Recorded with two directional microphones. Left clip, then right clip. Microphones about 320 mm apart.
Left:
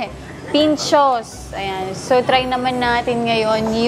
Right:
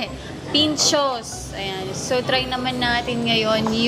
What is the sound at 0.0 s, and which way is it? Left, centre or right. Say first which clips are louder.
A woman's voice: left 2 dB; centre.